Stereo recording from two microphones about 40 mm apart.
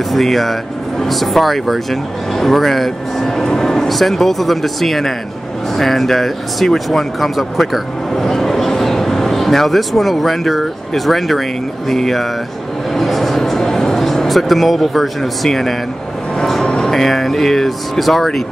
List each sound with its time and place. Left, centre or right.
0.1 s speech: centre
12.9 s a sound: centre
16.6 s music: centre
16.9 s speech: centre